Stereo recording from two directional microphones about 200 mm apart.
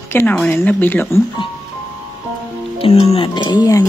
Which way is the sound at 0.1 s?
10° left (ahead or behind).